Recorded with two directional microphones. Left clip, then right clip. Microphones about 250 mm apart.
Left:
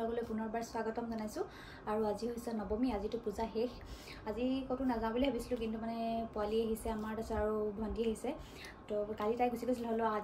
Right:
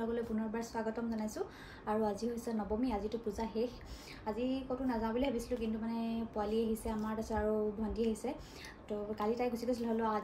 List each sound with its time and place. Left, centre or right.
0.1 s a woman's voice: centre
7.9 s a woman's voice: left
8.8 s a woman's voice: centre